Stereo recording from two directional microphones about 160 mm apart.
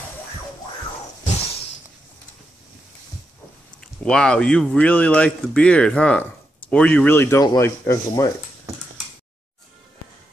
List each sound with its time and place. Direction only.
4.0 s speech: 5° left (ahead or behind)